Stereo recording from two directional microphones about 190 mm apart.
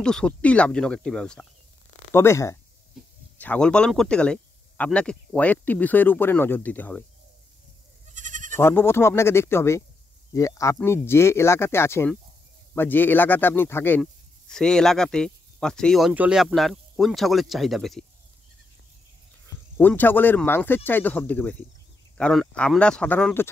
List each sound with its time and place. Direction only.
0.0 s speech: 5° left (ahead or behind)
8.1 s goat: 40° right (ahead or behind)
8.5 s speech: 10° left (ahead or behind)
19.8 s speech: 10° left (ahead or behind)